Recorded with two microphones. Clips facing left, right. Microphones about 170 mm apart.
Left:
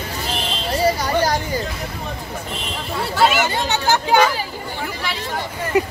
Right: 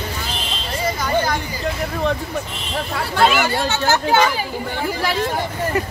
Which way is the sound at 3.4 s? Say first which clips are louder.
Right 1 dB; 15° left (ahead or behind).